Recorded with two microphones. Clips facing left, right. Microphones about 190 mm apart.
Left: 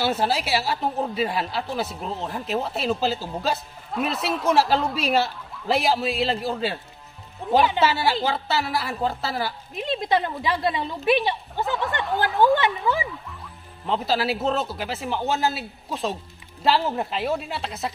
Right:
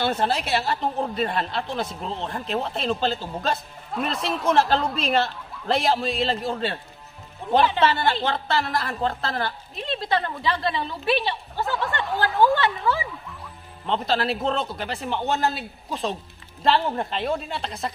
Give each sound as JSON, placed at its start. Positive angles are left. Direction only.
{"t": 0.0, "sound": "a woman's voice", "side_deg": 5}
{"t": 11.6, "sound": "a woman's voice", "side_deg": 0}
{"t": 12.5, "sound": "a woman's voice", "side_deg": 15}
{"t": 13.8, "sound": "a woman's voice", "side_deg": 5}